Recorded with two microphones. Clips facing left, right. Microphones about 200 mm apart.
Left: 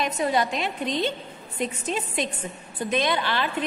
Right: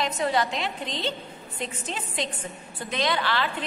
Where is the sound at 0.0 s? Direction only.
20° left (ahead or behind).